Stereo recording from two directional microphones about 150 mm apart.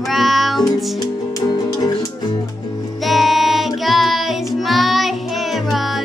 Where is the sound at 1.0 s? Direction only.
25° left (ahead or behind).